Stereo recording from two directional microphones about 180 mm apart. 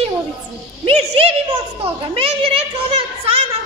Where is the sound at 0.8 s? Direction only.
30° right (ahead or behind).